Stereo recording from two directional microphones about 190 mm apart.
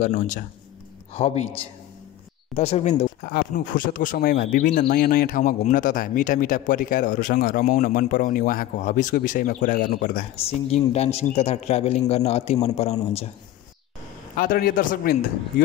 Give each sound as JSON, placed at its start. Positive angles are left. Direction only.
{"t": 0.0, "sound": "speech", "side_deg": 40}
{"t": 3.2, "sound": "speech", "side_deg": 50}
{"t": 10.4, "sound": "speech", "side_deg": 35}
{"t": 14.3, "sound": "speech", "side_deg": 50}